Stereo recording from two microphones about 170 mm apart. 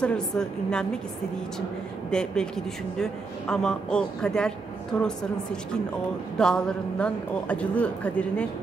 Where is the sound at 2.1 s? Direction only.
5° left (ahead or behind).